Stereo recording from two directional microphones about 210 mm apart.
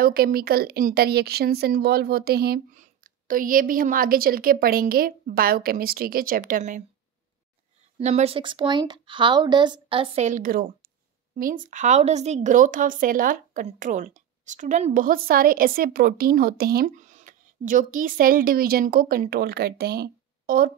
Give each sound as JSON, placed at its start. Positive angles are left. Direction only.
{"t": 0.0, "sound": "a woman's voice", "side_deg": -45}
{"t": 8.0, "sound": "a woman's voice", "side_deg": -30}